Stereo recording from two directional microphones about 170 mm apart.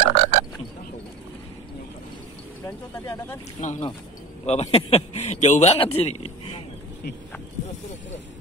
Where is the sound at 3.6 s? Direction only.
45° left (ahead or behind).